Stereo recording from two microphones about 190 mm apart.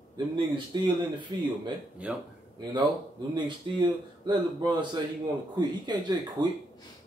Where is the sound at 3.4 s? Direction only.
25° right (ahead or behind).